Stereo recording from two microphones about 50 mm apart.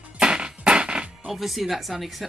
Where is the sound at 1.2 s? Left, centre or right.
Centre.